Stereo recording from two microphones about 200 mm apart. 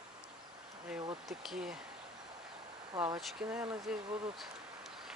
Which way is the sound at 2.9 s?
20° right (ahead or behind).